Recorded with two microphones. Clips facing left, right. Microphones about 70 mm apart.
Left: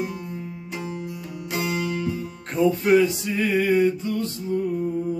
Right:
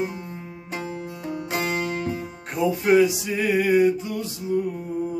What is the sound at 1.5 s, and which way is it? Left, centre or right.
Music, right.